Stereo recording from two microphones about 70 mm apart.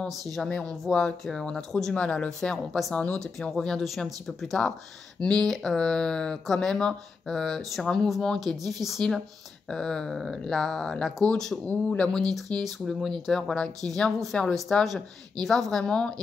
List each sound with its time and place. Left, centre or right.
0.2 s speech: centre
2.9 s speech: centre
3.2 s speech: centre
11.6 s a man's voice: centre
12.1 s speech: centre